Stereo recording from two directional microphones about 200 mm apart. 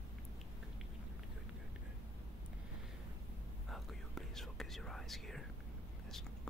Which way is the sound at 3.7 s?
Centre (ahead or behind).